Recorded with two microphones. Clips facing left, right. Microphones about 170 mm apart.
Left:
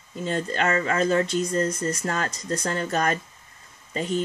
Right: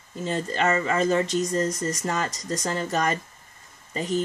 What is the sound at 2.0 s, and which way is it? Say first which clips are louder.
Speech: even; centre (ahead or behind).